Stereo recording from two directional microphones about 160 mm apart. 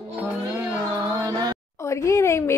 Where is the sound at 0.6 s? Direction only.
20° right (ahead or behind).